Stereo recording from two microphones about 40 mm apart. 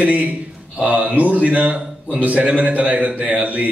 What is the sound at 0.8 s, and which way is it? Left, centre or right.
Speech, right.